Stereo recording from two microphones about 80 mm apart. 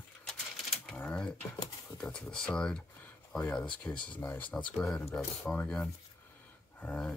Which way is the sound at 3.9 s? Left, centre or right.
Centre.